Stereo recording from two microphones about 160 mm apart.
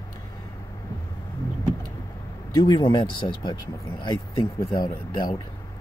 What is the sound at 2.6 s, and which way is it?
Speech, 30° left (ahead or behind).